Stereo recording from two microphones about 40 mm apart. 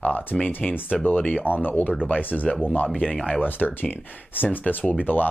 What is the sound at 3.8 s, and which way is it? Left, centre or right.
Speech, left.